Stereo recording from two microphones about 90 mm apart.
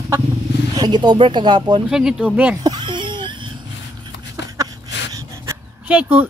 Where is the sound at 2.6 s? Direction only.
55° right (ahead or behind).